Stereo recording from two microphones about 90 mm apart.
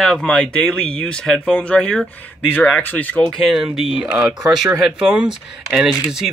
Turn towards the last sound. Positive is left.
turn(degrees=-5)  # may be behind; listen again after turning